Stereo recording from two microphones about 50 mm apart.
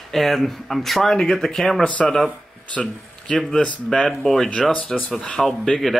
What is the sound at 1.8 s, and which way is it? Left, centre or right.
Speech, left.